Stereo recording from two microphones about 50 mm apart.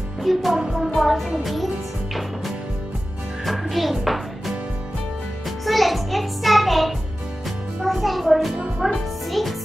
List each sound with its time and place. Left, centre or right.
0.2 s music: centre
3.4 s music: centre
5.7 s music: centre
7.8 s a child's voice: centre
8.5 s music: right
9.3 s music: centre